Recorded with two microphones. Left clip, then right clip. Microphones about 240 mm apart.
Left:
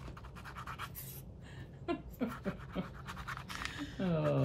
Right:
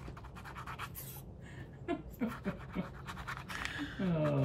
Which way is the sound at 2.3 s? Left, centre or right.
Centre.